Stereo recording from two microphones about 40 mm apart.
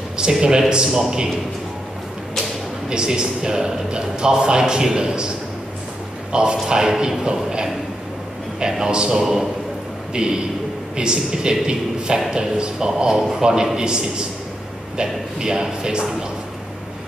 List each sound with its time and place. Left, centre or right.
0.2 s speech: centre
2.9 s speech: centre
6.3 s speech: centre
8.5 s a man's voice: centre
10.1 s a man's voice: centre